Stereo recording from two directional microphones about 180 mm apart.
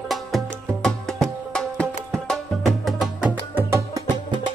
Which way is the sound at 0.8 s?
Centre (ahead or behind).